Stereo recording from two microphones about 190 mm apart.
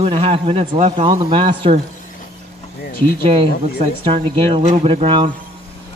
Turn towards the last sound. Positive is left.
turn(degrees=-30)  # may be behind; listen again after turning